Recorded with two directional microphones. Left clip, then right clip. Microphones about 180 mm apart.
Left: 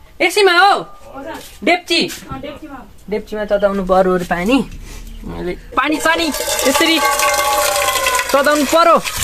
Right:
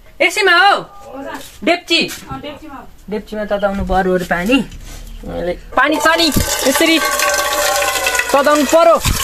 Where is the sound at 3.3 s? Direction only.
35° left (ahead or behind).